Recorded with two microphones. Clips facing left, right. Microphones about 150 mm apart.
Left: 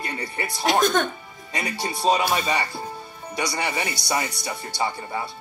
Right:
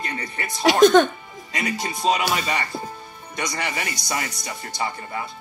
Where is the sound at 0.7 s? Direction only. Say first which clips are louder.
Right 7 dB; 80° right.